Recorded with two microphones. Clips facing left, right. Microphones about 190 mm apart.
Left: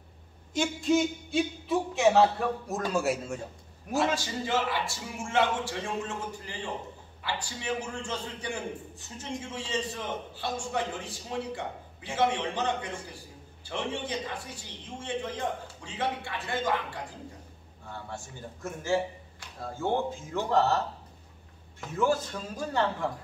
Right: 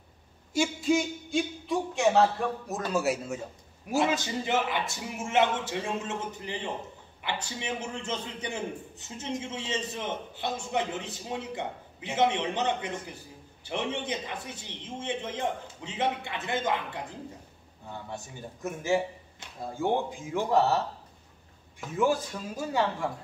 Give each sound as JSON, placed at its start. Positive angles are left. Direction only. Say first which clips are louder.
{"t": 0.5, "sound": "a man's voice", "louder": "even", "side_deg": -5}
{"t": 3.9, "sound": "a man's voice", "louder": "right 1 dB", "side_deg": -20}
{"t": 21.9, "sound": "speech", "louder": "right 1 dB", "side_deg": -15}